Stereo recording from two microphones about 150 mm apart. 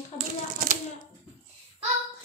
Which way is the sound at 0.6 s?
60° right (ahead or behind).